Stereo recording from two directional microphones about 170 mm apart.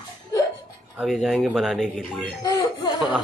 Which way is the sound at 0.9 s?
Centre (ahead or behind).